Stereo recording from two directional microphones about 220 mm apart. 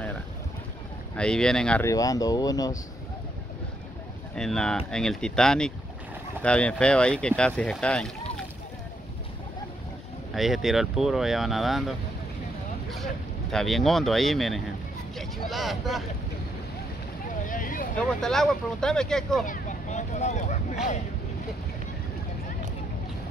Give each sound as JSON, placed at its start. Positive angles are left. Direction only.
{"t": 1.1, "sound": "speech", "side_deg": 5}
{"t": 4.4, "sound": "speech", "side_deg": 5}
{"t": 10.3, "sound": "speech", "side_deg": 0}
{"t": 12.9, "sound": "speech", "side_deg": 0}
{"t": 17.5, "sound": "vehicle", "side_deg": 40}
{"t": 17.9, "sound": "speech", "side_deg": 0}
{"t": 19.4, "sound": "vehicle", "side_deg": 35}